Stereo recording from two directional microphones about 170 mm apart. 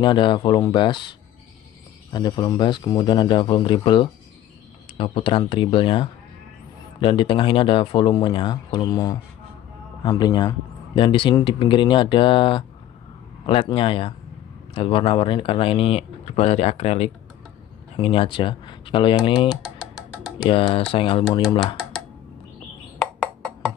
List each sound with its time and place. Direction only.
0.0 s speech: 30° left (ahead or behind)
2.1 s speech: 25° left (ahead or behind)
19.5 s music: centre (ahead or behind)
20.4 s speech: 30° left (ahead or behind)
21.5 s speech: centre (ahead or behind)
22.9 s a sound: 5° left (ahead or behind)